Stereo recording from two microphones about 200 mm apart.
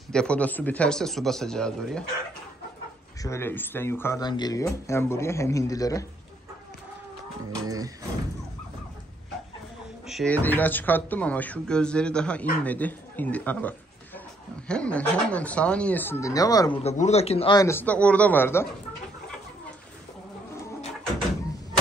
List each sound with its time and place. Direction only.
0.1 s speech: 5° left (ahead or behind)
3.2 s speech: 15° left (ahead or behind)
7.6 s speech: 20° right (ahead or behind)
10.0 s speech: centre (ahead or behind); by 16.7 s 20° left (ahead or behind)
16.8 s speech: 35° left (ahead or behind)
17.6 s speech: 10° left (ahead or behind)